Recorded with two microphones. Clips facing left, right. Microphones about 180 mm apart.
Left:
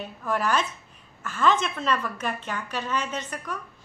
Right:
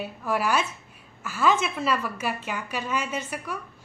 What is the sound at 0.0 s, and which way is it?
A woman's voice, 10° right (ahead or behind).